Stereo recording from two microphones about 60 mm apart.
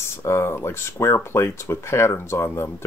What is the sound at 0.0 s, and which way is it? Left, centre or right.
Speech, left.